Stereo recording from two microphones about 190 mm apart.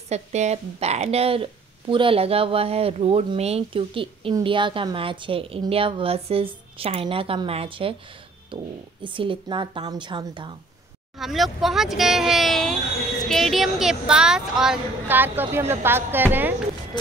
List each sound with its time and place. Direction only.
0.1 s a woman's voice: 35° right (ahead or behind)
11.1 s a woman's voice: centre (ahead or behind)